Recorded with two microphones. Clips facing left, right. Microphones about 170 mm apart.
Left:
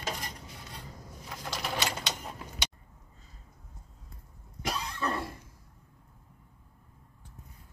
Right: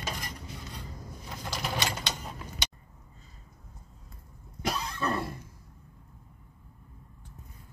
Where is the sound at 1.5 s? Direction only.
Centre (ahead or behind).